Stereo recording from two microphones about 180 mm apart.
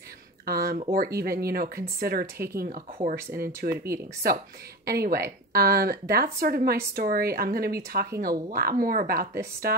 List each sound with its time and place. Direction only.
0.5 s speech: 55° right (ahead or behind)
3.7 s speech: 15° right (ahead or behind)
4.8 s speech: 60° right (ahead or behind)